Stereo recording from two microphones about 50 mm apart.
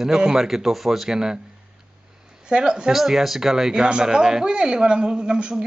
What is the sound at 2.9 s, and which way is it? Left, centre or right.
Speech, centre.